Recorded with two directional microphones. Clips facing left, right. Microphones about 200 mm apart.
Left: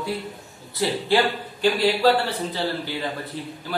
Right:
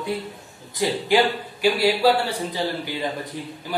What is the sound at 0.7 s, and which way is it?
A man's voice, 15° right (ahead or behind).